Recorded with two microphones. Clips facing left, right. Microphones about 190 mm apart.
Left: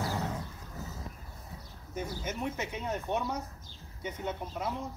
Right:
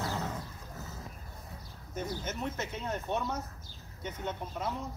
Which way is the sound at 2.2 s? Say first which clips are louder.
Left 1 dB; 10° left (ahead or behind).